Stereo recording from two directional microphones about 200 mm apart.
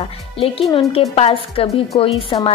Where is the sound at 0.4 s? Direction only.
30° left (ahead or behind).